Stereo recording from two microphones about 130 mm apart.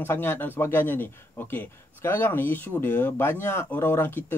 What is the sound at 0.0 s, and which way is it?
Speech, 15° left (ahead or behind).